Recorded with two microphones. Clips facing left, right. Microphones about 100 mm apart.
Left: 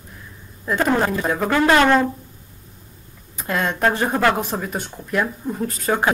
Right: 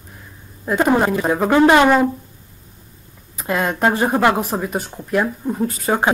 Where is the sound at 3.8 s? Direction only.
15° right (ahead or behind).